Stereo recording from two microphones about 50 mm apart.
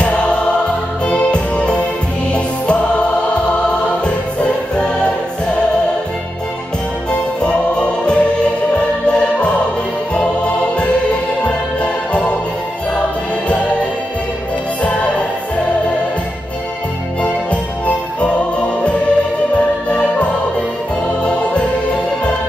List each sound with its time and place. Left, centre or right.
0.0 s music: left
4.0 s music: left
7.1 s music: centre
11.4 s music: left
17.2 s music: left